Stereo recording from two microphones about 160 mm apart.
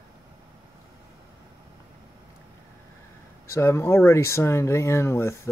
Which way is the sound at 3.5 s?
15° left (ahead or behind).